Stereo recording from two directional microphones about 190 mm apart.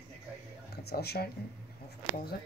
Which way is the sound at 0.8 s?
55° left (ahead or behind).